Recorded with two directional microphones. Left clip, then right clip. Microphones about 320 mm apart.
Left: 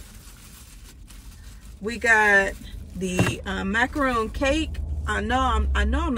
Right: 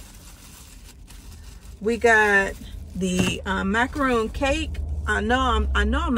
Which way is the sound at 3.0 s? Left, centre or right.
Centre.